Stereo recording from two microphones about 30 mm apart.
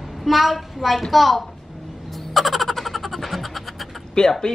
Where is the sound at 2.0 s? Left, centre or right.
Centre.